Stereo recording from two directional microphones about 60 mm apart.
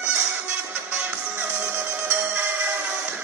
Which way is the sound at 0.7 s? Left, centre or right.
Right.